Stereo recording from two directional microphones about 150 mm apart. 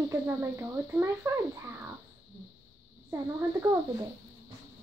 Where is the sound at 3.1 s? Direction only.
20° right (ahead or behind).